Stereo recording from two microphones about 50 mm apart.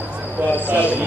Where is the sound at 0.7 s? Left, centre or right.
Right.